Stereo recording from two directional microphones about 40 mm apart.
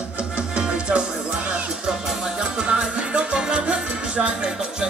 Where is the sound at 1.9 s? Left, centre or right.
Centre.